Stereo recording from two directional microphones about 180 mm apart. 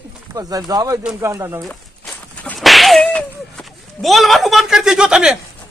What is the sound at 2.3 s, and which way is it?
Whip, 5° left (ahead or behind).